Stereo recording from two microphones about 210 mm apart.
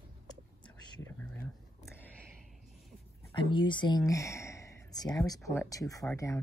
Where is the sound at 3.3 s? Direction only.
20° left (ahead or behind).